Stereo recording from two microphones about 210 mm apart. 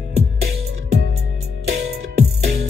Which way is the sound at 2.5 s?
45° right (ahead or behind).